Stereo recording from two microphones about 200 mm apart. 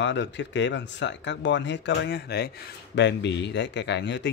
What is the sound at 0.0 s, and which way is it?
A man's voice, 60° left (ahead or behind).